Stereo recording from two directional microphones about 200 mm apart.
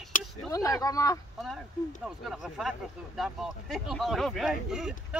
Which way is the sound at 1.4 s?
Centre (ahead or behind).